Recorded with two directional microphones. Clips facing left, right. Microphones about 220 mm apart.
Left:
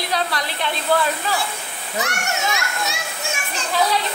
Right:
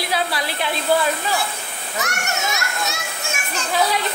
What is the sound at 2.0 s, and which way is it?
Speech, 30° left (ahead or behind).